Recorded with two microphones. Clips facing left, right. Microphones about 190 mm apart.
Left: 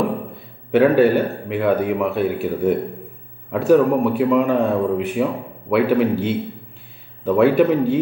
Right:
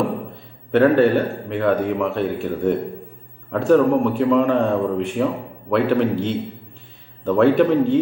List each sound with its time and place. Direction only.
0.7 s speech: 5° left (ahead or behind)